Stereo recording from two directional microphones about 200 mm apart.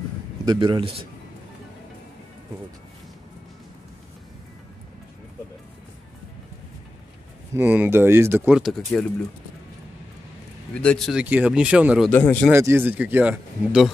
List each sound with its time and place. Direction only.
0.5 s a man's voice: 25° right (ahead or behind)
7.5 s speech: 10° right (ahead or behind)
10.7 s speech: 5° left (ahead or behind)
12.1 s speech: 10° left (ahead or behind)
12.4 s speech: 10° right (ahead or behind)